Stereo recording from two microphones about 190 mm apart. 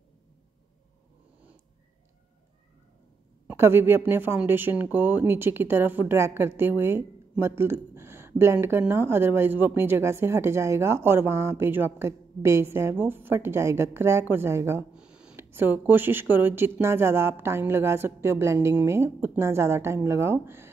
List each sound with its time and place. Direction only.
3.4 s speech: 10° right (ahead or behind)